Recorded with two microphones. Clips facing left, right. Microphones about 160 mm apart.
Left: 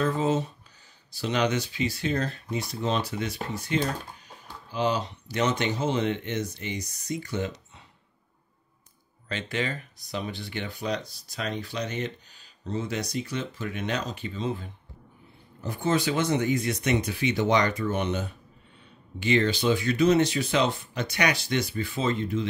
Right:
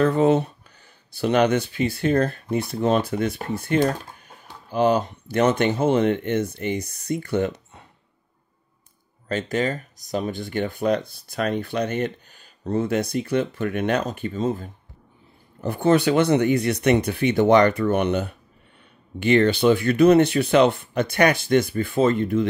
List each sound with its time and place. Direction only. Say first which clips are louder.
0.0 s speech: right 7 dB; 60° right (ahead or behind)
9.3 s speech: right 7 dB; 45° right (ahead or behind)
15.6 s speech: right 7 dB; 60° right (ahead or behind)